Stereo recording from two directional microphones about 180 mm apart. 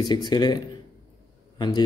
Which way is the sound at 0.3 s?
25° left (ahead or behind).